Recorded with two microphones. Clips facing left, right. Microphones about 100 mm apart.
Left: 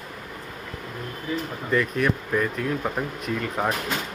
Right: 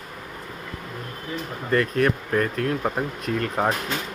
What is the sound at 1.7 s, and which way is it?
Speech, 55° right (ahead or behind).